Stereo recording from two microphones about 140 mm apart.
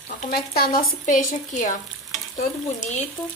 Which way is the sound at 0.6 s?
90° left.